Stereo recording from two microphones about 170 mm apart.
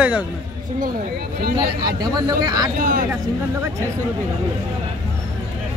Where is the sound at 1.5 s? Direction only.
25° right (ahead or behind).